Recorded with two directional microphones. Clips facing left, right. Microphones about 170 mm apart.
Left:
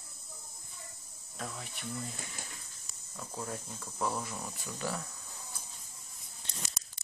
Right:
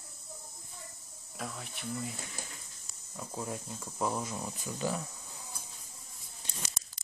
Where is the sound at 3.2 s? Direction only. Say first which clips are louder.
Right 2 dB; 15° right (ahead or behind).